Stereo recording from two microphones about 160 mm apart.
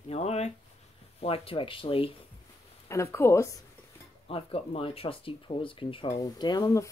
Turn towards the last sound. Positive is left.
turn(degrees=25)  # may be behind; listen again after turning